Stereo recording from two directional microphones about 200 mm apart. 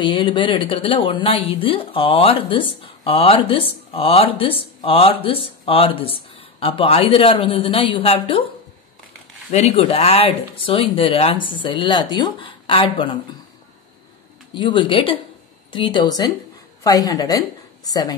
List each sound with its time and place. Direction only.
0.0 s speech: 25° left (ahead or behind)
9.5 s speech: 35° left (ahead or behind)
14.5 s a woman's voice: 25° left (ahead or behind)